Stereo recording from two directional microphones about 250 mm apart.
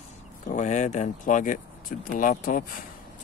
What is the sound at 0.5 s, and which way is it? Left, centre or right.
Speech, left.